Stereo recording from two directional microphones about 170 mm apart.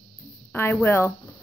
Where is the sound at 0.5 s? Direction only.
15° left (ahead or behind).